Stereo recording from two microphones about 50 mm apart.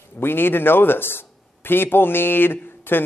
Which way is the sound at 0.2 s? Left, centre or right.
Left.